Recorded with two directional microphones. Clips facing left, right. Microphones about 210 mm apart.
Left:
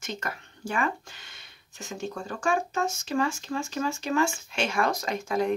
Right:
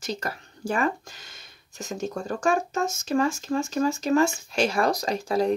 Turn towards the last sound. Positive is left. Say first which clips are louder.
# right 3 dB
turn(degrees=-35)  # may be behind; listen again after turning